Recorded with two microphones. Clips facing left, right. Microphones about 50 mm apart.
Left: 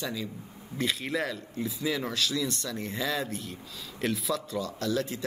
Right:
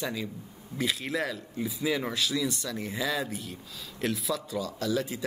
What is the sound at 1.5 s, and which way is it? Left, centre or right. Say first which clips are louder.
Speech: right 2 dB; centre.